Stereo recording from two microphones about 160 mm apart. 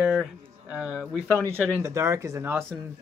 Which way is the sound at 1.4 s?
15° right (ahead or behind).